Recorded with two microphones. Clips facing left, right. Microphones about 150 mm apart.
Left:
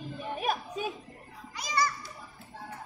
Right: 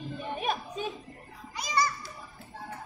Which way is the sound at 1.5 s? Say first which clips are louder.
Right 1 dB; 20° right (ahead or behind).